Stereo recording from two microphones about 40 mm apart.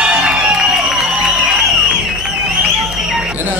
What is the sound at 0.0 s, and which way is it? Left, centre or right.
Music, centre.